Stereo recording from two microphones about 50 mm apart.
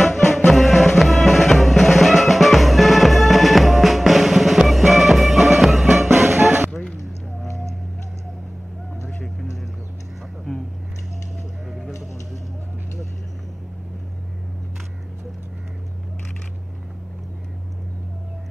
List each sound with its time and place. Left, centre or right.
0.0 s music: centre
9.0 s vehicle: centre
10.5 s a sound: centre